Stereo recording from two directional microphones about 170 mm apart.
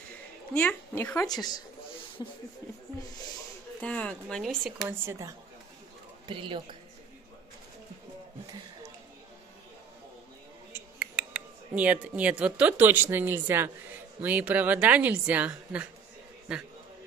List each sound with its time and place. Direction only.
0.6 s a woman's voice: 10° left (ahead or behind)
3.8 s speech: 5° left (ahead or behind)
4.8 s a woman's voice: 15° right (ahead or behind)
6.2 s speech: 30° right (ahead or behind)
10.7 s a woman's voice: 5° right (ahead or behind)